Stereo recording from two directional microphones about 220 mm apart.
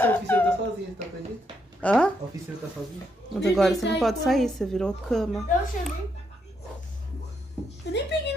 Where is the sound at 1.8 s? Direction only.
5° left (ahead or behind).